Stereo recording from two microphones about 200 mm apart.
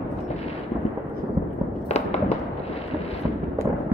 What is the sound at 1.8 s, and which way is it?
Fireworks, 35° left (ahead or behind).